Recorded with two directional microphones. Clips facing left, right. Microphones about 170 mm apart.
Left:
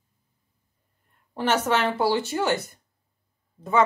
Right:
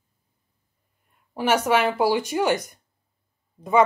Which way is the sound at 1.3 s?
10° right (ahead or behind).